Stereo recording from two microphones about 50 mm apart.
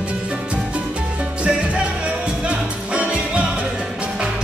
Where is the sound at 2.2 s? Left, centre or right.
Right.